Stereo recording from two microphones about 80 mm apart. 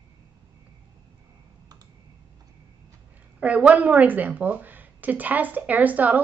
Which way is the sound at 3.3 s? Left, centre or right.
Centre.